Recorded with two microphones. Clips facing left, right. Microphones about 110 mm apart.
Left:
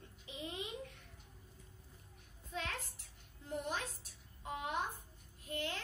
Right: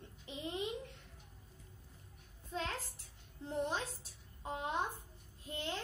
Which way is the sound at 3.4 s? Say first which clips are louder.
Right 3 dB; 30° right (ahead or behind).